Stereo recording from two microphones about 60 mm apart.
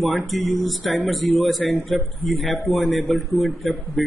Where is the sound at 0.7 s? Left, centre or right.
Centre.